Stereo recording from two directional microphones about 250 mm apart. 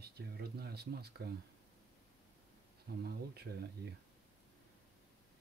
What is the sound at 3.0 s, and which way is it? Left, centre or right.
Speech, right.